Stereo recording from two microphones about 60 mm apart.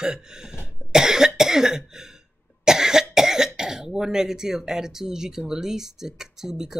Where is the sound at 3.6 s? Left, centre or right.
Centre.